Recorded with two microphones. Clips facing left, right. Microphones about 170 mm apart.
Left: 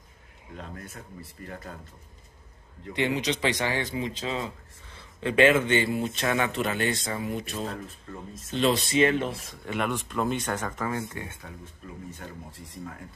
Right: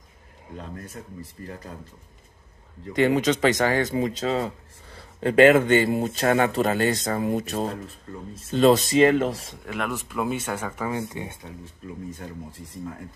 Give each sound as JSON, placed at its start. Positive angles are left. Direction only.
{"t": 0.5, "sound": "speech", "side_deg": -35}
{"t": 2.9, "sound": "speech", "side_deg": -45}
{"t": 9.7, "sound": "speech", "side_deg": 0}